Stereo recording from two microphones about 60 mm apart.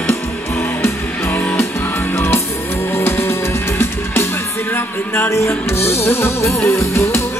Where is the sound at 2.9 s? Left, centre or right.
Left.